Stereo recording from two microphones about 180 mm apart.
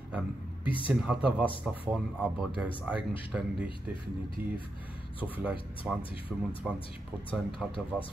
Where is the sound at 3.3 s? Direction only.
5° right (ahead or behind).